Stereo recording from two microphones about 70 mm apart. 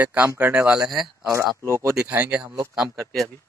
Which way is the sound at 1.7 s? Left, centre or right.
Right.